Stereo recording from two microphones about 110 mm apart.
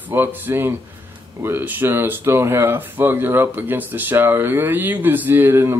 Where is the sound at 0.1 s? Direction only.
20° right (ahead or behind).